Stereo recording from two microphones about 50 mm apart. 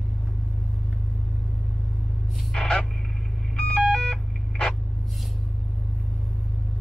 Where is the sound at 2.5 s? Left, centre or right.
Centre.